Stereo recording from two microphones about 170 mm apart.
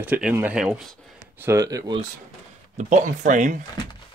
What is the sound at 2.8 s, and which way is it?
Speech, 45° right (ahead or behind).